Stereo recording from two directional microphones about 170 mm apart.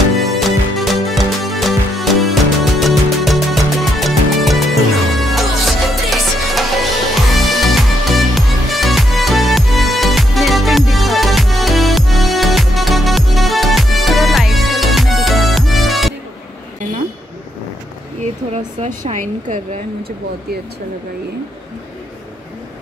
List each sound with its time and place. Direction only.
0.2 s music: centre (ahead or behind)
18.5 s speech: 45° right (ahead or behind)